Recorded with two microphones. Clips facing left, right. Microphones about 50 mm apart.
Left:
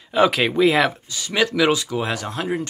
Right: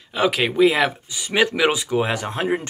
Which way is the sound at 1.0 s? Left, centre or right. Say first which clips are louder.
Right 2 dB; centre.